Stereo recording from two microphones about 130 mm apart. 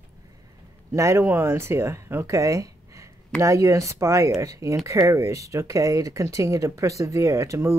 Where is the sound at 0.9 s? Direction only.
25° right (ahead or behind).